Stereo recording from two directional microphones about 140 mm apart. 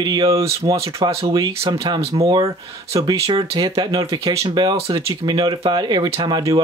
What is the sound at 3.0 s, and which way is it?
Speech, 25° right (ahead or behind).